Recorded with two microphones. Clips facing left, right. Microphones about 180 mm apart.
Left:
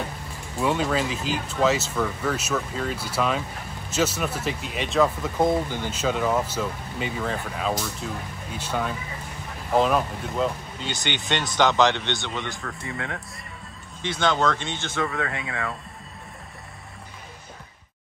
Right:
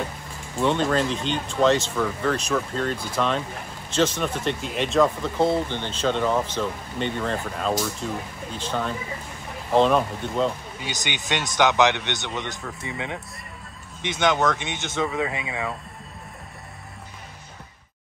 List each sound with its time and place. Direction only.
0.6 s speech: 5° left (ahead or behind)
10.8 s speech: 10° right (ahead or behind)
12.6 s speech: 5° right (ahead or behind)
14.0 s speech: 15° right (ahead or behind)
15.1 s speech: 5° right (ahead or behind)